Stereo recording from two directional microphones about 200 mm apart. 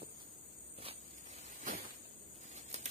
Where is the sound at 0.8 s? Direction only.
30° right (ahead or behind).